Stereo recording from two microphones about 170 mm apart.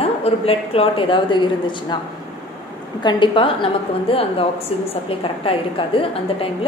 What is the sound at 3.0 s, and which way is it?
A woman's voice, 30° left (ahead or behind).